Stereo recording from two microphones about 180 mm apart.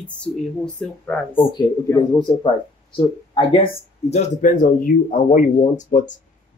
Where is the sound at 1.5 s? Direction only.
20° left (ahead or behind).